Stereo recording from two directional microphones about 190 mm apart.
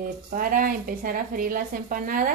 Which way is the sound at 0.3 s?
45° right (ahead or behind).